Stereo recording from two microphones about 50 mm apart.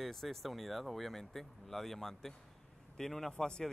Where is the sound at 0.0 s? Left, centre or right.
Centre.